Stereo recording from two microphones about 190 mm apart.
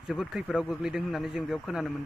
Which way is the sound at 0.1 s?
Centre (ahead or behind).